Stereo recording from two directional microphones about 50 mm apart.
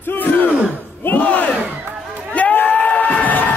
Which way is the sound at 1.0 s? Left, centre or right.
Left.